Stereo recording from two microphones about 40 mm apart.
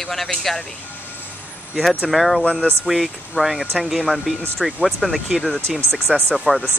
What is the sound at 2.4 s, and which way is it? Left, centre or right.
Speech, left.